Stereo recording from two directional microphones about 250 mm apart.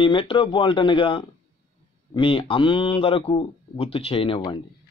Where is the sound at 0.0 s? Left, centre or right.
Left.